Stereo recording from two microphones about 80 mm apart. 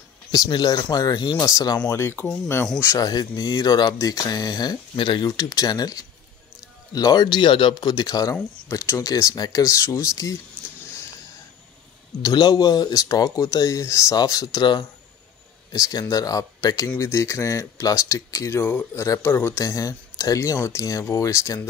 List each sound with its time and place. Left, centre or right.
0.3 s speech: left
1.4 s speech: left
1.9 s speech: left
3.0 s speech: left
7.9 s speech: left
8.6 s speech: left
12.2 s speech: left
19.6 s speech: left